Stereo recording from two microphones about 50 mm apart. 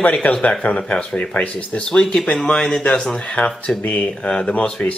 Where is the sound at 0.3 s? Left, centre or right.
Centre.